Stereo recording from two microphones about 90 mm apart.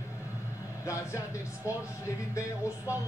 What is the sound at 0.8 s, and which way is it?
Speech, 35° left (ahead or behind).